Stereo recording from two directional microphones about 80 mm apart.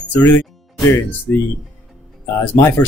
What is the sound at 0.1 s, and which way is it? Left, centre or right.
Speech, left.